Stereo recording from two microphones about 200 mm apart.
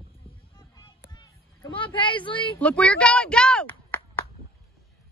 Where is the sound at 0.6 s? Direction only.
20° left (ahead or behind).